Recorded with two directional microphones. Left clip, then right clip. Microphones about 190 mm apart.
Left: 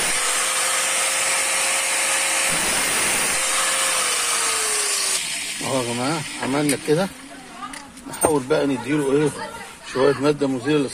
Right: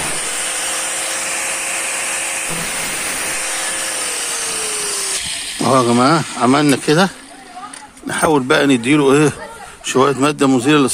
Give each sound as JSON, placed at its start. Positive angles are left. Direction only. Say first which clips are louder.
{"t": 5.6, "sound": "speech", "louder": "right 13 dB", "side_deg": -60}
{"t": 8.5, "sound": "speech", "louder": "right 8 dB", "side_deg": -60}
{"t": 9.9, "sound": "speech", "louder": "right 4 dB", "side_deg": -50}